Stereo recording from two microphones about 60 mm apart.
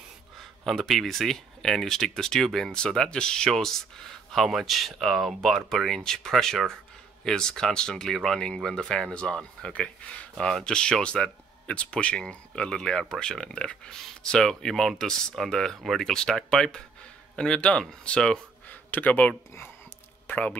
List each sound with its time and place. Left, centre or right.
0.7 s speech: centre
18.7 s speech: left